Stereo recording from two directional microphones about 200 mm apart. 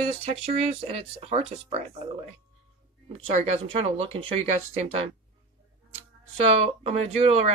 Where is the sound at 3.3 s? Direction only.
35° right (ahead or behind).